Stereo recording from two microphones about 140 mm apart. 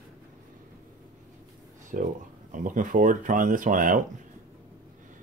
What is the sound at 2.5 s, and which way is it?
Speech, 65° right (ahead or behind).